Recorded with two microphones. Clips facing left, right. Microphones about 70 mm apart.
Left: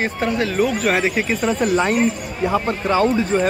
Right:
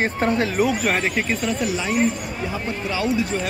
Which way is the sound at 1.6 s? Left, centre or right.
Left.